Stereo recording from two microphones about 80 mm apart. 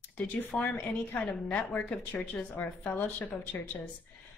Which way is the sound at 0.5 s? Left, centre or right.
Centre.